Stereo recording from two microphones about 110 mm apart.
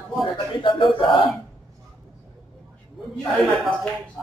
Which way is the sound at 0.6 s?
50° left (ahead or behind).